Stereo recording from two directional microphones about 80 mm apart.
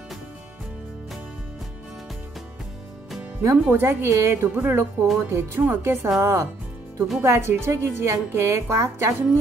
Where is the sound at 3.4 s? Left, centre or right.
Right.